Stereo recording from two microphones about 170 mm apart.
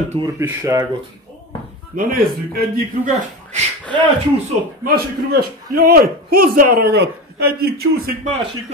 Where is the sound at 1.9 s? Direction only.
60° right (ahead or behind).